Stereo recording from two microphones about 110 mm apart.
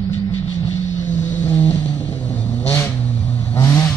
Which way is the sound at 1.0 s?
90° left.